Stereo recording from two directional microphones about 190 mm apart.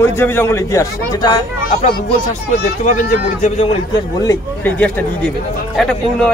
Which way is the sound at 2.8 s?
40° left (ahead or behind).